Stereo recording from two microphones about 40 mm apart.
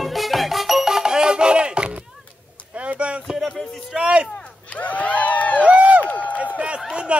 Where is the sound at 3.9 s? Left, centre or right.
Right.